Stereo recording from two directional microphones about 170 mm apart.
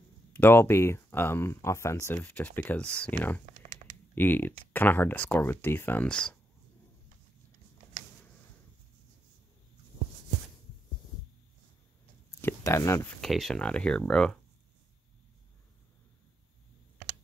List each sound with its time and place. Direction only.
0.3 s speech: 10° left (ahead or behind)
12.4 s a sound: 15° left (ahead or behind)
13.2 s speech: centre (ahead or behind)